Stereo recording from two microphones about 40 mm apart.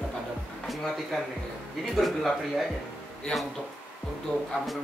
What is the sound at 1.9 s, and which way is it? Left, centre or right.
Speech, centre.